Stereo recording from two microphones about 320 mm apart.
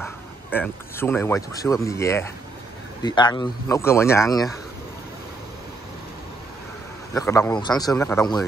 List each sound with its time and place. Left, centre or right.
0.0 s speech: centre
7.2 s speech: centre